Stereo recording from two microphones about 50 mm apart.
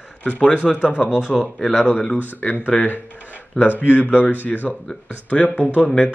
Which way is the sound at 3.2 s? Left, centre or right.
Right.